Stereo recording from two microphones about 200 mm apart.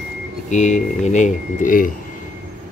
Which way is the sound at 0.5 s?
35° left (ahead or behind).